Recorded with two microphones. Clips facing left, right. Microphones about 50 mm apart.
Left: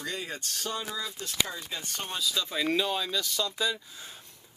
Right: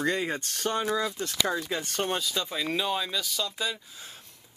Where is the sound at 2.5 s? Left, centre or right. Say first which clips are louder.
Left 1 dB; centre.